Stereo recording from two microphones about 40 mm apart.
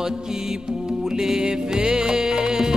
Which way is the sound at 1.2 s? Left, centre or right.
Centre.